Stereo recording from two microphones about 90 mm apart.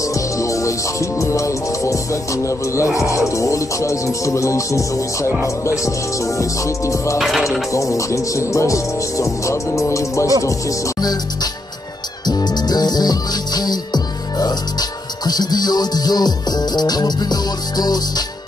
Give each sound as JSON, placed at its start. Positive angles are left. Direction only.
{"t": 0.0, "sound": "music", "side_deg": 35}
{"t": 7.2, "sound": "music", "side_deg": 0}
{"t": 7.7, "sound": "music", "side_deg": 35}
{"t": 12.3, "sound": "music", "side_deg": 50}